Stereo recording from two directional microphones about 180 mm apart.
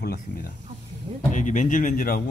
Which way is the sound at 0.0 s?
60° left (ahead or behind).